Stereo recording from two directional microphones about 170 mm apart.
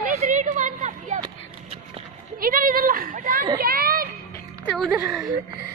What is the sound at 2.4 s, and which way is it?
A woman's voice, 55° right (ahead or behind).